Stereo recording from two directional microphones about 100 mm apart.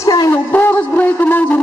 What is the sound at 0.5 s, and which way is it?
Speech, 20° left (ahead or behind).